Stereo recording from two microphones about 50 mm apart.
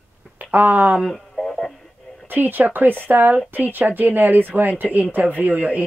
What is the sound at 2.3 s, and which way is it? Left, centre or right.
Speech, right.